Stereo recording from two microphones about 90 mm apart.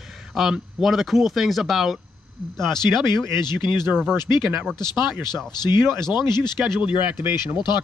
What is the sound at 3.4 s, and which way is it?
Speech, 50° left (ahead or behind).